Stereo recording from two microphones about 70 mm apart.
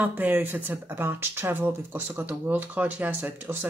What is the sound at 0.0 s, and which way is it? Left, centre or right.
Speech, right.